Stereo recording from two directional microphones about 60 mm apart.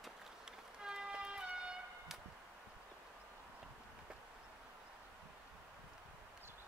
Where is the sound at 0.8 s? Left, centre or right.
Centre.